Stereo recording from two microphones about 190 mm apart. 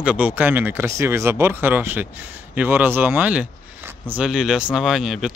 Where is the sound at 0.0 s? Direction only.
5° right (ahead or behind).